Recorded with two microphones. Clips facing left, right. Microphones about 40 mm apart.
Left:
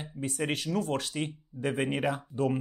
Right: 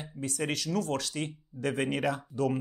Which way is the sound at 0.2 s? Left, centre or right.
Right.